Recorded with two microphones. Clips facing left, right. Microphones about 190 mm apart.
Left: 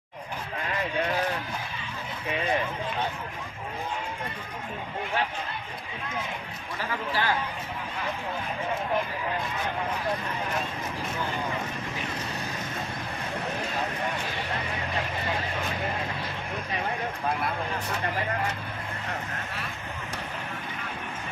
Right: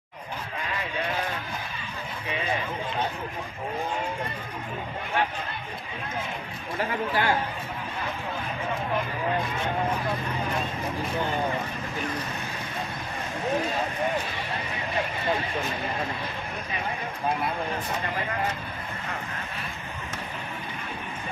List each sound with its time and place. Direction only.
6.8 s a man's voice: 25° right (ahead or behind)